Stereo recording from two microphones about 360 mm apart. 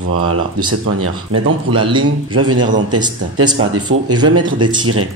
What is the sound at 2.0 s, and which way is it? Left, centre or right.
Speech, right.